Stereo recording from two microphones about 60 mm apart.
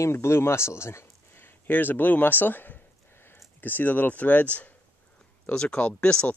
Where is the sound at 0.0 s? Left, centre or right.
Left.